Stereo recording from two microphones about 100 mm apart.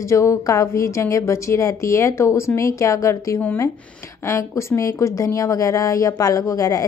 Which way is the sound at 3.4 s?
20° left (ahead or behind).